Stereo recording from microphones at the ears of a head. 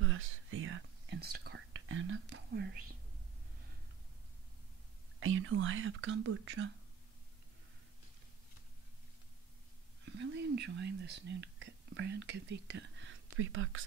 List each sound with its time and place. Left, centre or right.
0.0 s whispering: right
5.2 s speech: right
10.1 s speech: right